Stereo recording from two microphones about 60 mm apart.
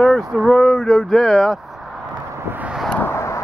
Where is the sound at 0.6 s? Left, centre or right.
Centre.